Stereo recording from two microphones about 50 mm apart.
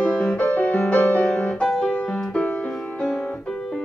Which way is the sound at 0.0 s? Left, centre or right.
Left.